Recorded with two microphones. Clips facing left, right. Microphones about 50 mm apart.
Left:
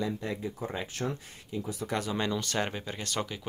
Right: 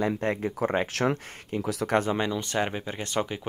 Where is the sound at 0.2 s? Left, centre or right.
Right.